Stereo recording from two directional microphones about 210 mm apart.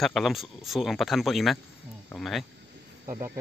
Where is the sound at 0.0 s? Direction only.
Centre (ahead or behind).